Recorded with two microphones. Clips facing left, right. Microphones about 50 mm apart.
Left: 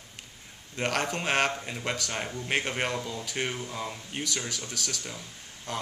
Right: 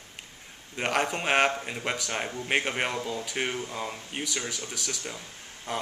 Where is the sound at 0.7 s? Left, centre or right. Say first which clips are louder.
Right 2 dB; centre.